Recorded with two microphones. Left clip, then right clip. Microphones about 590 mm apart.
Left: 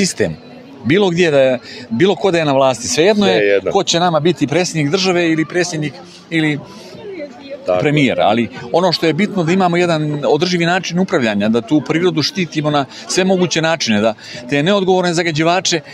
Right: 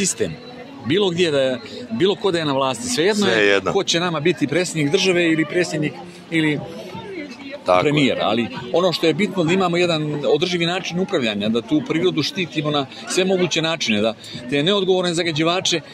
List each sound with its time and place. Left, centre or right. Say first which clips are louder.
0.2 s speech: left 6 dB; left
3.3 s speech: left 3 dB; left
3.7 s speech: left 6 dB; left
7.8 s speech: left 5 dB; left